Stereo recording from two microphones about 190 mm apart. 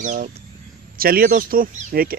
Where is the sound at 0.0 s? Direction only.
40° right (ahead or behind).